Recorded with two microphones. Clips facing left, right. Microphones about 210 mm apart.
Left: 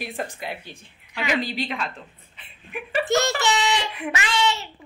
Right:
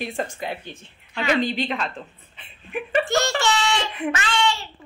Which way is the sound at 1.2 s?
5° left (ahead or behind).